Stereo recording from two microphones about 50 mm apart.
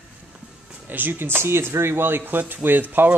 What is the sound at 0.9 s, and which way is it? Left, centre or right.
Speech, right.